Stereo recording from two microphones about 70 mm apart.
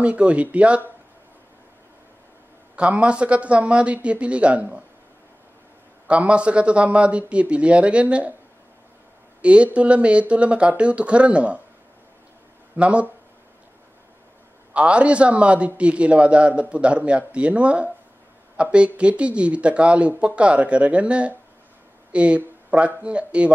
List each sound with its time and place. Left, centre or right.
0.0 s speech: centre
2.7 s speech: centre
6.0 s speech: centre
9.4 s speech: centre
12.7 s speech: centre
14.7 s speech: centre